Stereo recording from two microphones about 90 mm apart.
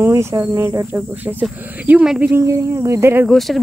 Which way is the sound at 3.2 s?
Centre (ahead or behind).